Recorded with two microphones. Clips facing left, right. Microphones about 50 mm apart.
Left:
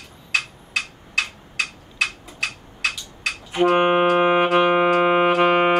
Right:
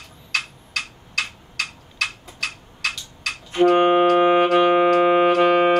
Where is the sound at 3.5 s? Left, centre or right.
Centre.